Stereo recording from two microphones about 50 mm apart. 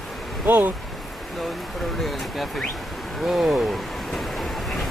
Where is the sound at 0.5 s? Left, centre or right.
Right.